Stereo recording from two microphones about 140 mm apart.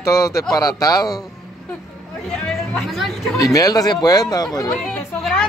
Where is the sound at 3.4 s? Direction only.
25° left (ahead or behind).